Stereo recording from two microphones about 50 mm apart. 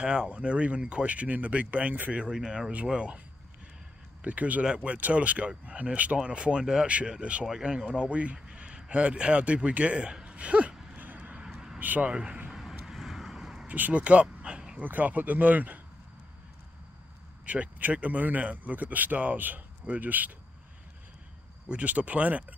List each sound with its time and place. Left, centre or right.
0.0 s speech: centre
2.2 s speech: centre
4.2 s speech: right
11.0 s vehicle: right
11.4 s vehicle: centre
11.8 s speech: right
12.1 s speech: centre
12.5 s vehicle: centre
13.7 s speech: right
14.8 s speech: right
17.5 s speech: right
21.6 s speech: right